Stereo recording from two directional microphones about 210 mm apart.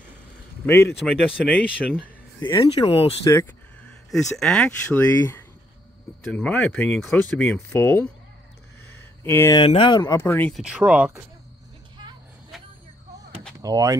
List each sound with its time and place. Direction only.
0.7 s speech: 10° left (ahead or behind)
0.9 s speech: centre (ahead or behind)
2.6 s speech: 25° left (ahead or behind)
3.3 s speech: 5° left (ahead or behind)
8.9 s a sound: 10° left (ahead or behind)
9.6 s speech: 25° left (ahead or behind); by 10.6 s 10° left (ahead or behind)
10.6 s speech: 5° right (ahead or behind)
13.6 s speech: 15° right (ahead or behind)